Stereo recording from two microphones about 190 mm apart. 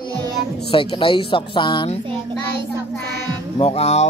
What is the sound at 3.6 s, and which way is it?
Speech, 30° left (ahead or behind).